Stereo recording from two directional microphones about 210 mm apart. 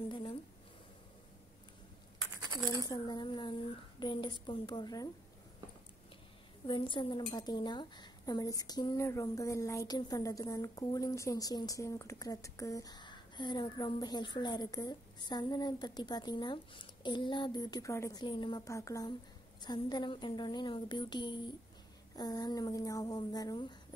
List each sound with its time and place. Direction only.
0.1 s a sound: 25° left (ahead or behind)
2.9 s speech: 20° left (ahead or behind)
6.7 s speech: 25° left (ahead or behind)